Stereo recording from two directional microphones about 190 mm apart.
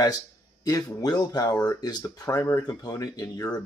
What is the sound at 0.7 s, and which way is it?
Speech, 20° left (ahead or behind).